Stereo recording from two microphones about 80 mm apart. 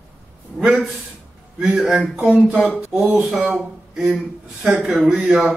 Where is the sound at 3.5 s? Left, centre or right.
Centre.